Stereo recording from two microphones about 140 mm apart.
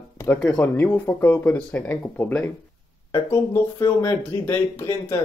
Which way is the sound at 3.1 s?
25° left (ahead or behind).